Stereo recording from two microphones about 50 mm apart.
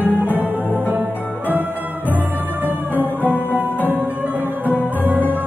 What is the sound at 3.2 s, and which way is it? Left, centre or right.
Music, left.